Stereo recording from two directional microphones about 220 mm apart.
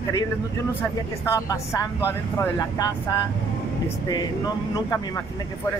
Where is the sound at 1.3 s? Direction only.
15° left (ahead or behind).